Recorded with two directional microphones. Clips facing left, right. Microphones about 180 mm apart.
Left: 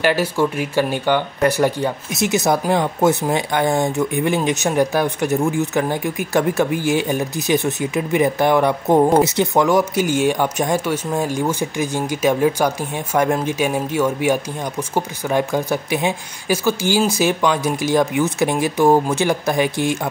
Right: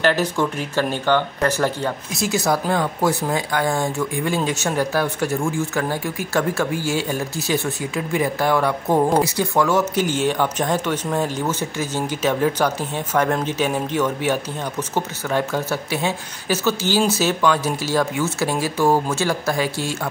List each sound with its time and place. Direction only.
0.0 s speech: 10° left (ahead or behind)